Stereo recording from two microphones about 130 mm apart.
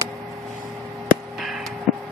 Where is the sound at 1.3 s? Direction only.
Centre (ahead or behind).